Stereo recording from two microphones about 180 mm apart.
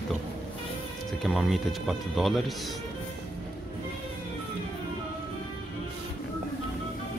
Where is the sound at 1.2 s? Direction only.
Centre (ahead or behind).